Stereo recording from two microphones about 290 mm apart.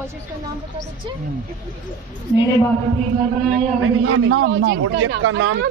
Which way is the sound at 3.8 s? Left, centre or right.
Right.